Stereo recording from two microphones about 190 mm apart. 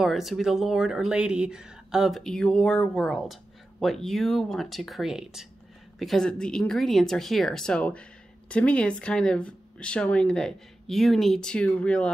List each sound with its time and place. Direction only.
0.0 s a woman's voice: centre (ahead or behind)